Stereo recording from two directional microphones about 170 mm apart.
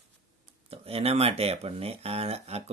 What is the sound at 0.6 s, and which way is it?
Speech, 35° right (ahead or behind).